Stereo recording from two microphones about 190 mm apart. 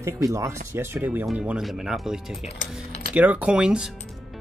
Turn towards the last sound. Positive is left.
turn(degrees=-5)  # may be behind; listen again after turning